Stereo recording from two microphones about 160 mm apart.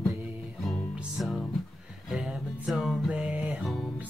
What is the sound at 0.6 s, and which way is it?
Music, centre (ahead or behind).